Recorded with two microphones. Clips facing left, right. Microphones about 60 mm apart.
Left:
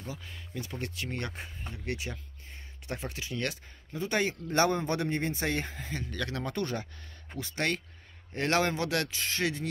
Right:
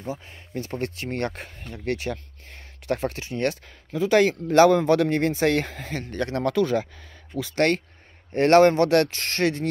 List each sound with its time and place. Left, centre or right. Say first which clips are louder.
0.0 s speech: right 9 dB; right
0.6 s speech: right 8 dB; right
3.9 s speech: right 11 dB; right
6.1 s speech: right 9 dB; right
7.3 s speech: right 10 dB; right